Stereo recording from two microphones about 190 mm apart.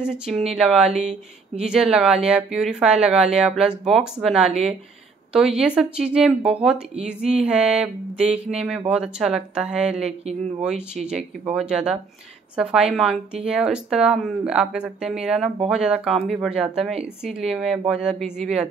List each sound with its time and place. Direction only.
0.0 s a woman's voice: 5° right (ahead or behind)